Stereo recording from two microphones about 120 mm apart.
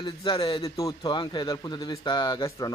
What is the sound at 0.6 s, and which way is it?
Speech, 25° left (ahead or behind).